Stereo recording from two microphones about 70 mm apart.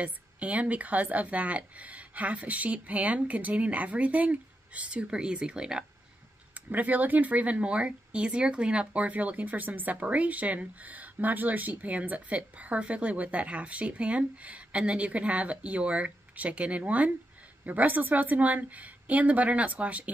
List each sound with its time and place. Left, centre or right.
0.0 s speech: centre
6.5 s speech: right